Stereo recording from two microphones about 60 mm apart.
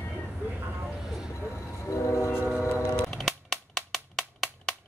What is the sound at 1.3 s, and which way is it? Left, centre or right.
Train, left.